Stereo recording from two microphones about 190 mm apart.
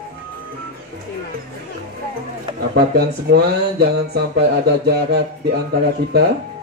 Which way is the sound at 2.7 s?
60° right (ahead or behind).